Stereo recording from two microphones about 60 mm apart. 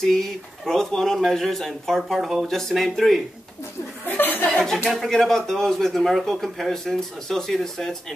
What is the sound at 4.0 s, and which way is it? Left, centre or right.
Chuckle, left.